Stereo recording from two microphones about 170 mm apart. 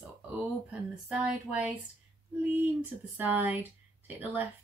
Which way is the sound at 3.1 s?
10° right (ahead or behind).